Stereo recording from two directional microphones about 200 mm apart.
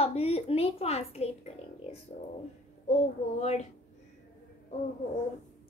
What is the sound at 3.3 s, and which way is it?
Speech, 35° left (ahead or behind).